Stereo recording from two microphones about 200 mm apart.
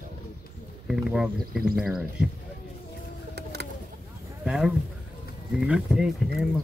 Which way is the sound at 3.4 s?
55° right (ahead or behind).